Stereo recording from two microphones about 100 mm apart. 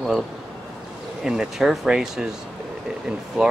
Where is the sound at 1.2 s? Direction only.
5° right (ahead or behind).